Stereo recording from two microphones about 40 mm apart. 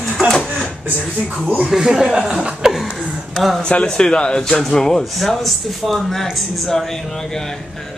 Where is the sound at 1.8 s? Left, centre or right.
Centre.